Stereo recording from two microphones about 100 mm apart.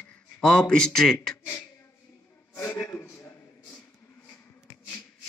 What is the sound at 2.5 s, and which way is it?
Speech, 25° left (ahead or behind).